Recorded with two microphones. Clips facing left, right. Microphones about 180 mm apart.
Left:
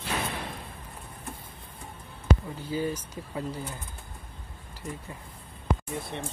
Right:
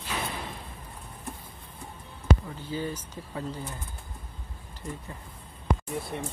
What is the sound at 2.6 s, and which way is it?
Speech, 10° left (ahead or behind).